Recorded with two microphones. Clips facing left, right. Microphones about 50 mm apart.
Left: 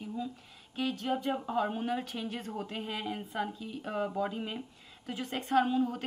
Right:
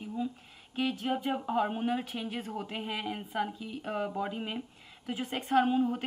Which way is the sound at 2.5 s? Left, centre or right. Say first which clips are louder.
Right 1 dB; right.